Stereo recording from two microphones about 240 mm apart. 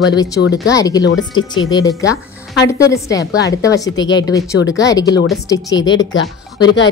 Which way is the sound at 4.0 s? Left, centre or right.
Left.